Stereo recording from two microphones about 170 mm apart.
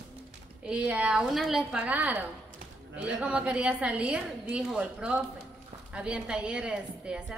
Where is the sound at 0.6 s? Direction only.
5° right (ahead or behind).